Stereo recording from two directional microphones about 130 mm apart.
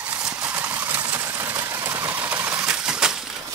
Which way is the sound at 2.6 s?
5° right (ahead or behind).